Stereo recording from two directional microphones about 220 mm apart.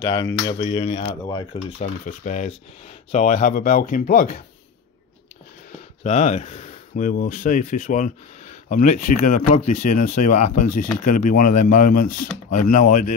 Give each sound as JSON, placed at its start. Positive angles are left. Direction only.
{"t": 0.0, "sound": "speech", "side_deg": 15}
{"t": 0.6, "sound": "speech", "side_deg": 25}
{"t": 1.8, "sound": "speech", "side_deg": 35}
{"t": 6.0, "sound": "speech", "side_deg": 30}